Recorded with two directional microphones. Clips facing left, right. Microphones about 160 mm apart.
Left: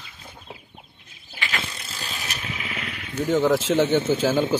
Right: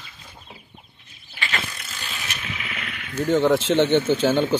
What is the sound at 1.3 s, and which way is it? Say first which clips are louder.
Vehicle: right 1 dB; 30° left (ahead or behind).